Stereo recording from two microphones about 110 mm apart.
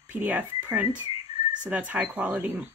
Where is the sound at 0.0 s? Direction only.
15° right (ahead or behind).